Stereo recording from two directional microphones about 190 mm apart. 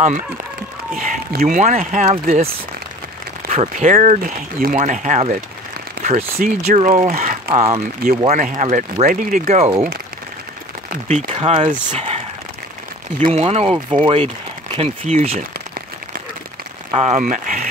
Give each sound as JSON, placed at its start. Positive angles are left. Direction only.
{"t": 0.9, "sound": "speech", "side_deg": -45}
{"t": 7.5, "sound": "speech", "side_deg": -30}
{"t": 10.9, "sound": "speech", "side_deg": -35}
{"t": 13.2, "sound": "speech", "side_deg": -35}
{"t": 16.9, "sound": "speech", "side_deg": -35}